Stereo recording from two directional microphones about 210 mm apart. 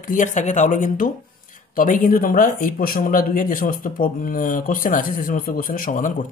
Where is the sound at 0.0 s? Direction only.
40° left (ahead or behind).